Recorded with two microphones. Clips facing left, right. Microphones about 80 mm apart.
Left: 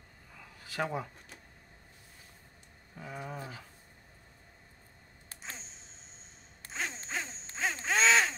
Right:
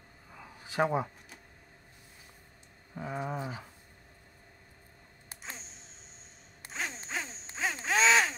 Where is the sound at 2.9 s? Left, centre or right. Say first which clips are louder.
Right 6 dB; right.